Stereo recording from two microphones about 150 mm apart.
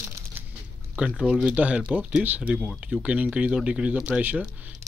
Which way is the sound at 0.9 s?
5° right (ahead or behind).